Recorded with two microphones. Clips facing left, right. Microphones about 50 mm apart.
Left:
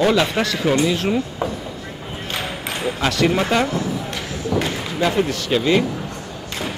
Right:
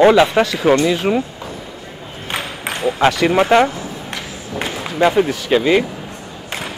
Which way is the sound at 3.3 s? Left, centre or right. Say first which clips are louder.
Right 6 dB; right.